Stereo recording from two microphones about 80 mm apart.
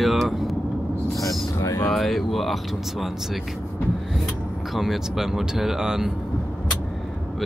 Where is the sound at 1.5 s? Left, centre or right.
Left.